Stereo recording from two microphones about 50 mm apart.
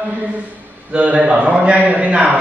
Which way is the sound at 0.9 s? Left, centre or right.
Right.